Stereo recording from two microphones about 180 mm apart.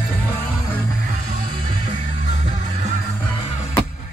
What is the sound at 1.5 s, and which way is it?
Music, 30° right (ahead or behind).